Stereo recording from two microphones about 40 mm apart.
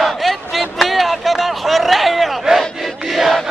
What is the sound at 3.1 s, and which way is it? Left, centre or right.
Chant, centre.